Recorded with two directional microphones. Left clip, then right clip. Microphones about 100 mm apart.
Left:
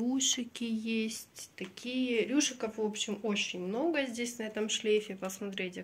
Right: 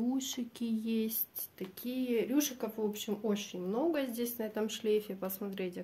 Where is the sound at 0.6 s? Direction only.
30° right (ahead or behind).